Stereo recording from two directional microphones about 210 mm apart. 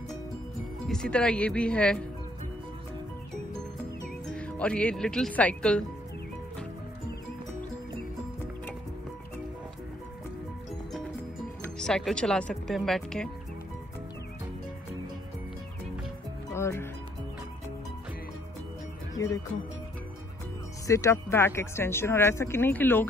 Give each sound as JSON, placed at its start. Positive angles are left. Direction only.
{"t": 0.8, "sound": "speech", "side_deg": 5}
{"t": 4.3, "sound": "speech", "side_deg": 5}
{"t": 11.6, "sound": "speech", "side_deg": 5}
{"t": 16.5, "sound": "music", "side_deg": 10}
{"t": 19.1, "sound": "speech", "side_deg": 15}
{"t": 20.8, "sound": "speech", "side_deg": 15}